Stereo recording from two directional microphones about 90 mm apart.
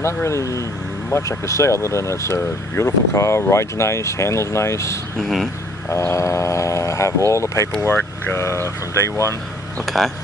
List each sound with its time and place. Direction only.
0.0 s speech: 30° left (ahead or behind)
5.2 s speech: centre (ahead or behind)
5.9 s speech: 30° left (ahead or behind)
9.8 s speech: centre (ahead or behind)